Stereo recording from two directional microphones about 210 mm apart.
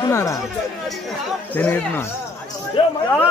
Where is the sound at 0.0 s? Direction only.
15° left (ahead or behind).